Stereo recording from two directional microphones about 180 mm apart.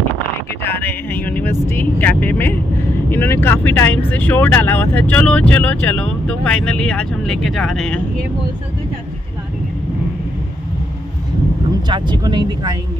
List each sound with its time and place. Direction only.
0.7 s speech: 10° left (ahead or behind)
11.9 s speech: 25° right (ahead or behind)